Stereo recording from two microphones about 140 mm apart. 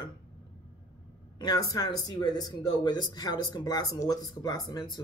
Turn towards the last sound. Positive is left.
turn(degrees=25)  # may be behind; listen again after turning